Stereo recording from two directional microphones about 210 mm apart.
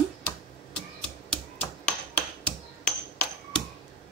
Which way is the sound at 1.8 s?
5° left (ahead or behind).